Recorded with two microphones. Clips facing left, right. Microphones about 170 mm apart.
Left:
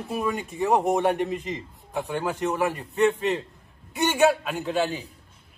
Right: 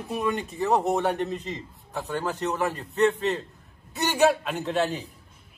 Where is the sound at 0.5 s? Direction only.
15° left (ahead or behind).